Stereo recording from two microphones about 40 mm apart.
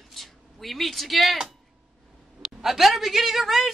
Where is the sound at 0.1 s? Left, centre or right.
Centre.